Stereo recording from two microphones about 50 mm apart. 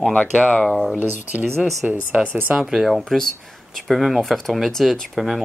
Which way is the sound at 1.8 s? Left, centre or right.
Centre.